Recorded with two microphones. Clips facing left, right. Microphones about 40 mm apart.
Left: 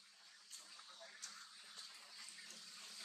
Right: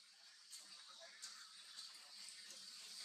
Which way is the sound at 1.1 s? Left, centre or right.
Left.